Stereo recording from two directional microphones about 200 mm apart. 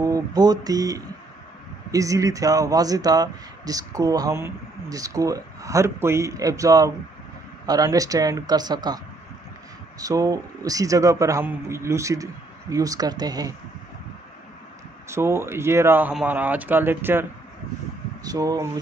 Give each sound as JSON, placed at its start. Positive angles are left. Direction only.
{"t": 0.0, "sound": "speech", "side_deg": -20}
{"t": 15.0, "sound": "speech", "side_deg": -15}